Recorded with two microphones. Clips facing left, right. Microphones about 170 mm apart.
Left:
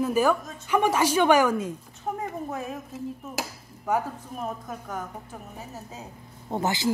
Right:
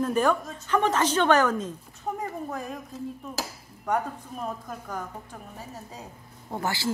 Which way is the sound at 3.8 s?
5° left (ahead or behind).